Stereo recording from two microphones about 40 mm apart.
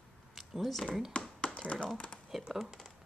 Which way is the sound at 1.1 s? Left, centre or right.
Left.